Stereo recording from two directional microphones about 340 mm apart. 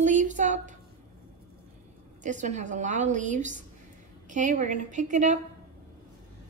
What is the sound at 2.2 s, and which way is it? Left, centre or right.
A woman's voice, right.